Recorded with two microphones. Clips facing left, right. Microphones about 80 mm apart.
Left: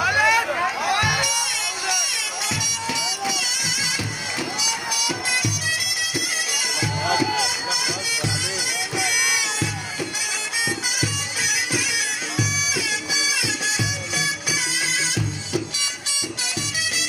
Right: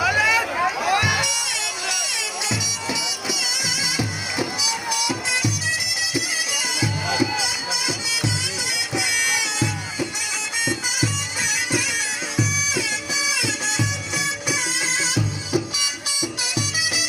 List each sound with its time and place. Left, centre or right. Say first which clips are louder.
0.0 s music: left 1 dB; centre
5.0 s music: even; centre
8.7 s bagpipes: even; centre
11.0 s bagpipes: right 1 dB; centre
13.4 s music: right 1 dB; centre